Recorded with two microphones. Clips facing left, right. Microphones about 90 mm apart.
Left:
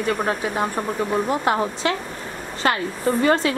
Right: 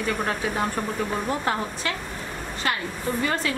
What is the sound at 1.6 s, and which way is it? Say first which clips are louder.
Speech: left 7 dB; 30° left (ahead or behind).